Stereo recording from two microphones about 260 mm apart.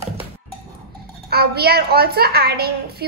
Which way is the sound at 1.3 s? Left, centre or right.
Right.